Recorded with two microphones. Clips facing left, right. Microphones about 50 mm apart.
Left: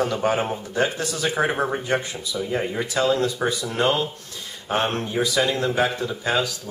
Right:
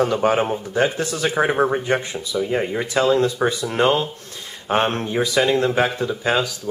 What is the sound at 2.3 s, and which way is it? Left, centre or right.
Speech, right.